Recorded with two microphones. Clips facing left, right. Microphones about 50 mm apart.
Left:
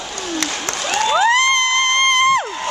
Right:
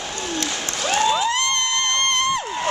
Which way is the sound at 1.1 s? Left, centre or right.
Left.